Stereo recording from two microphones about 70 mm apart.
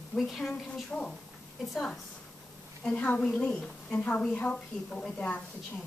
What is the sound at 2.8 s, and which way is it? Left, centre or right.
A woman's voice, centre.